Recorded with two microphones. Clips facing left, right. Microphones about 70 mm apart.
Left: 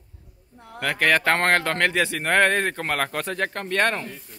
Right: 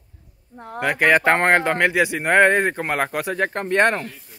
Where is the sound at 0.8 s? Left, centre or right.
Centre.